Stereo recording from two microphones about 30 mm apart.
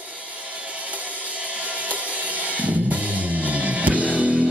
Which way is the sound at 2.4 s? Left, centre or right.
Right.